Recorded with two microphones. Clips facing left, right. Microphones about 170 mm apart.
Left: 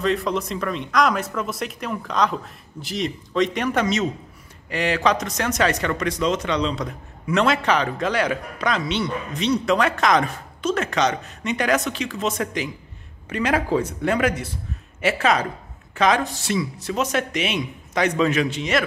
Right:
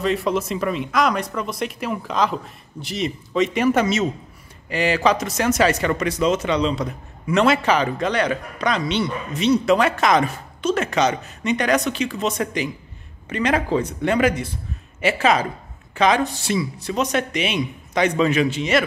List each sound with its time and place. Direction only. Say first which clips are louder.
0.0 s speech: right 1 dB; centre (ahead or behind)